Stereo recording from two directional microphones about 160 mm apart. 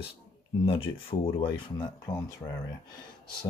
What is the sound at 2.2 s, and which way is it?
Speech, 25° left (ahead or behind).